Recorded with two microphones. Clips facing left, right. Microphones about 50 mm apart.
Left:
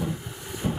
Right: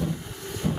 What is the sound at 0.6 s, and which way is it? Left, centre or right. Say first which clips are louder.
Music: even; centre.